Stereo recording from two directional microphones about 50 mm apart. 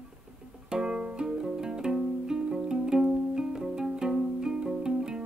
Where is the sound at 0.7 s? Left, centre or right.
Centre.